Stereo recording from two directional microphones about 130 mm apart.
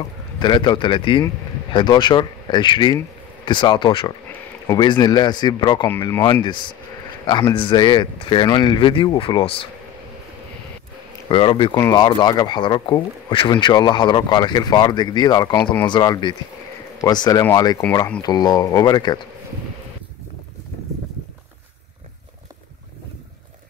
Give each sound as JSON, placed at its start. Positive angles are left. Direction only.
{"t": 0.4, "sound": "speech", "side_deg": 35}
{"t": 7.5, "sound": "speech", "side_deg": 40}
{"t": 11.2, "sound": "speech", "side_deg": 40}
{"t": 11.7, "sound": "speech", "side_deg": 30}
{"t": 15.5, "sound": "speech", "side_deg": 20}
{"t": 15.9, "sound": "speech", "side_deg": 35}